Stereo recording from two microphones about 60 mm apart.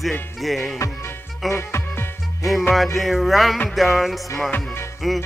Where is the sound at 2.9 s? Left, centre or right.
Centre.